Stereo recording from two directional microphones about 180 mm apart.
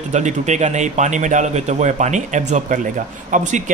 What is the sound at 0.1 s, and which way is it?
A man's voice, 40° right (ahead or behind).